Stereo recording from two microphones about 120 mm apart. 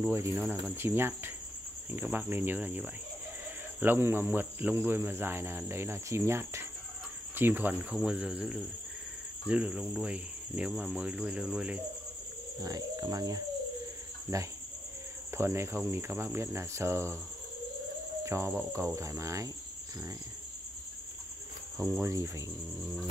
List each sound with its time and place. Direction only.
0.0 s cricket: 20° right (ahead or behind)
1.9 s speech: 15° right (ahead or behind)
3.8 s cricket: 20° right (ahead or behind)
7.3 s speech: 15° right (ahead or behind)
12.6 s cricket: 30° right (ahead or behind)
18.2 s cricket: 20° right (ahead or behind)
21.7 s cricket: 25° right (ahead or behind)